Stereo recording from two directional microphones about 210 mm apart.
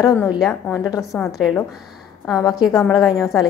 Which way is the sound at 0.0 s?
15° left (ahead or behind).